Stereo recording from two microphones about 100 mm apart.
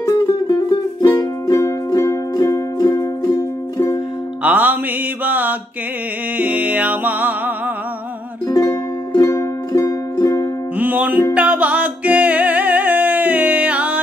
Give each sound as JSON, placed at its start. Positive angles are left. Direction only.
{"t": 0.0, "sound": "music", "side_deg": 35}
{"t": 4.4, "sound": "music", "side_deg": -15}
{"t": 5.2, "sound": "mantra", "side_deg": -15}
{"t": 6.3, "sound": "music", "side_deg": -15}
{"t": 8.5, "sound": "music", "side_deg": 35}
{"t": 10.8, "sound": "music", "side_deg": -15}